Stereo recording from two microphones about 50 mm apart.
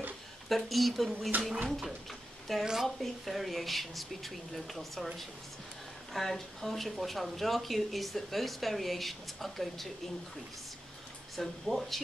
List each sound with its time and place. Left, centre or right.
0.5 s speech: centre
1.3 s speech: right
1.7 s speech: centre
2.6 s a woman's voice: centre
11.3 s speech: centre